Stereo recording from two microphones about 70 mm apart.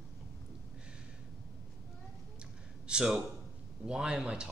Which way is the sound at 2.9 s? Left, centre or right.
Centre.